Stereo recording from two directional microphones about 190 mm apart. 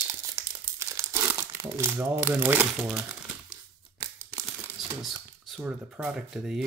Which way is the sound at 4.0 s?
15° right (ahead or behind).